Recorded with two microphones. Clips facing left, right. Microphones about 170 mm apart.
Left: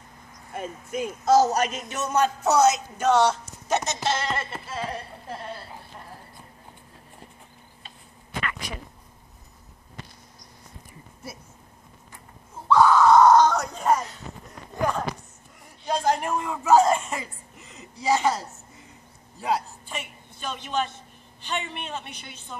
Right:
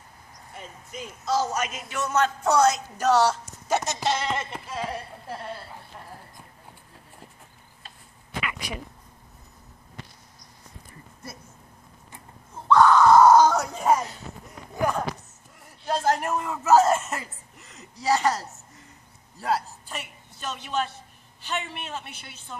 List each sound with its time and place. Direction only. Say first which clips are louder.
0.6 s a man's voice: left 9 dB; 55° left (ahead or behind); by 1.9 s 35° left (ahead or behind)
1.9 s speech: right 3 dB; 20° left (ahead or behind); by 5.4 s 10° right (ahead or behind)
8.4 s a sound: even; 10° right (ahead or behind)
12.6 s screaming: even; 10° left (ahead or behind); by 14.0 s 5° right (ahead or behind)
15.8 s a man's voice: even; 5° right (ahead or behind)
19.4 s a woman's voice: even; centre (ahead or behind)